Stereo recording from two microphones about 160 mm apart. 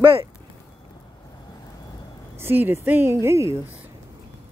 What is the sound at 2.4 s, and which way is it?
Speech, 15° right (ahead or behind).